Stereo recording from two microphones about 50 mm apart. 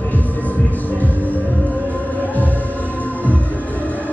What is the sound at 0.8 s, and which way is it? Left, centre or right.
Music, left.